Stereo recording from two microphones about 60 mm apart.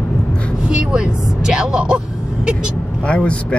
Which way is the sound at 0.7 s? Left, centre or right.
Centre.